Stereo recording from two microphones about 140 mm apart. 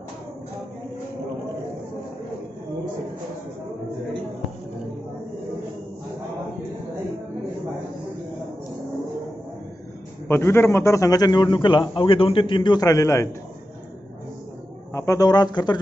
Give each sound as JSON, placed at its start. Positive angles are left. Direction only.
{"t": 10.2, "sound": "a man's voice", "side_deg": 15}
{"t": 15.0, "sound": "speech", "side_deg": 25}